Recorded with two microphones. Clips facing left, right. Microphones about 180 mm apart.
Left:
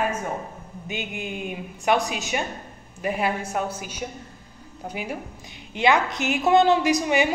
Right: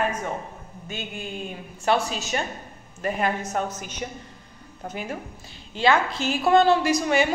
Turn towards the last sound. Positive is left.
turn(degrees=15)  # may be behind; listen again after turning